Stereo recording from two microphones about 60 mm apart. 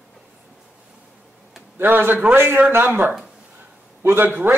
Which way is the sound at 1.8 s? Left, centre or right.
Right.